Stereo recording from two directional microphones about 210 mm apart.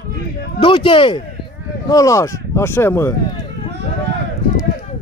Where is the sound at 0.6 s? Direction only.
25° left (ahead or behind).